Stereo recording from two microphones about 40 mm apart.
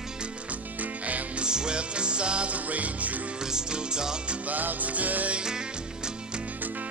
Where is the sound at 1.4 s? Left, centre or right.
Right.